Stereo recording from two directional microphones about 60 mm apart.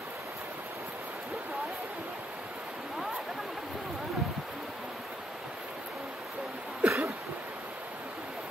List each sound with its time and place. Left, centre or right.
6.8 s cough: right